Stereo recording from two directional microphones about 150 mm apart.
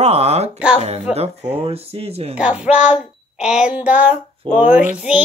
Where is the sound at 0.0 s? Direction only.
45° right (ahead or behind).